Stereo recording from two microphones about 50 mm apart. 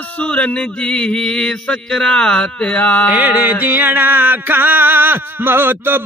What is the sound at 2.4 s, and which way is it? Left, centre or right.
Mantra, left.